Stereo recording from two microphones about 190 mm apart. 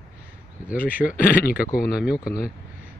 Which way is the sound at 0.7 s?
50° left (ahead or behind).